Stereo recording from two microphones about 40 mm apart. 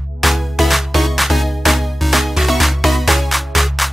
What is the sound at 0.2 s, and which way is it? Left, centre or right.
Music, centre.